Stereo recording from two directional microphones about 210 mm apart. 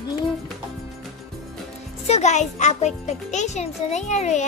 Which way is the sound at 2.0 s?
30° left (ahead or behind).